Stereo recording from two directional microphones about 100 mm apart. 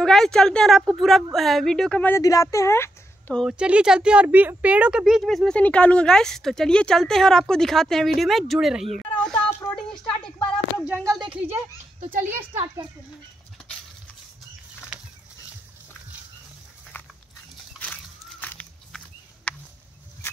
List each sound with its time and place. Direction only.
0.0 s a woman's voice: 5° left (ahead or behind)
2.0 s speech: 20° left (ahead or behind)
2.2 s a woman's voice: 35° left (ahead or behind)
3.4 s a woman's voice: 10° right (ahead or behind)
9.1 s a sound: 10° left (ahead or behind)
9.5 s a sound: 25° left (ahead or behind)
9.9 s a woman's voice: 10° left (ahead or behind)
11.3 s speech: 25° right (ahead or behind)
16.9 s dog: 20° left (ahead or behind)
17.8 s a sound: 15° left (ahead or behind)
18.4 s walk: 15° left (ahead or behind)
18.9 s a sound: 5° left (ahead or behind)